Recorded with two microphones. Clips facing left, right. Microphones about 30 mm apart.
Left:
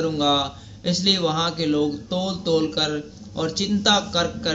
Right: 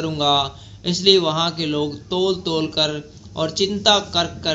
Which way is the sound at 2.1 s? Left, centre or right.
Right.